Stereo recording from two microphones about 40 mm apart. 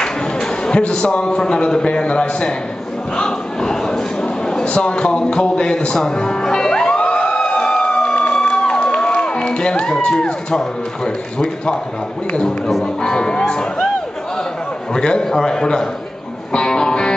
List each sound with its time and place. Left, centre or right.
0.0 s a man's voice: centre
3.2 s a sound: centre
4.6 s speech: left
5.9 s music: centre
10.0 s speech: centre
12.8 s speech: left
15.0 s a man's voice: left
16.5 s music: centre